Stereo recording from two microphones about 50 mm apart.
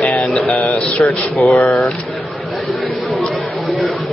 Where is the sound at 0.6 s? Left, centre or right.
Left.